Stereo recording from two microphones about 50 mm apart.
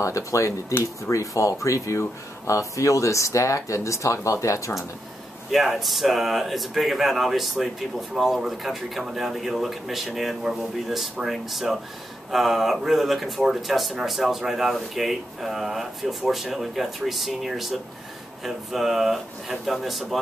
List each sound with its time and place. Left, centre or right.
0.0 s speech: left
0.7 s speech: left
5.5 s speech: centre